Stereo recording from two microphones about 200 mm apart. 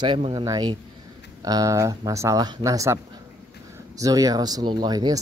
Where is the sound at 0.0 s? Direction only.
25° right (ahead or behind).